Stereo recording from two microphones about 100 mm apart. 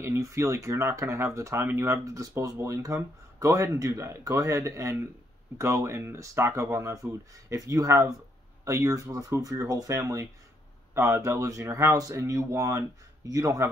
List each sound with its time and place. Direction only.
0.0 s speech: 30° right (ahead or behind)